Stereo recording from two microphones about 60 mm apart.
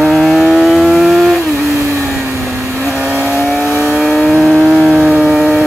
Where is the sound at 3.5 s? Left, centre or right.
Left.